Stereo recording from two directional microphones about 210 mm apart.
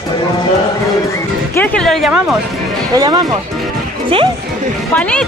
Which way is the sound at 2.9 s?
15° right (ahead or behind).